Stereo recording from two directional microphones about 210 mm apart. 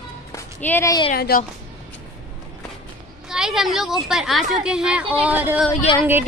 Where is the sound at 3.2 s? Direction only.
Centre (ahead or behind).